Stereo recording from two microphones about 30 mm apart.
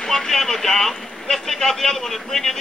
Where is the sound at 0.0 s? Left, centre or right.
Centre.